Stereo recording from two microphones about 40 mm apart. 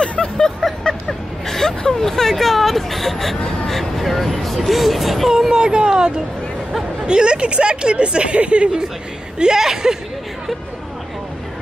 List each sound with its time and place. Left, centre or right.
0.2 s vehicle: centre
1.9 s hubbub: centre
3.6 s vehicle: centre
5.5 s a sound: right
7.1 s speech: right
9.4 s speech: centre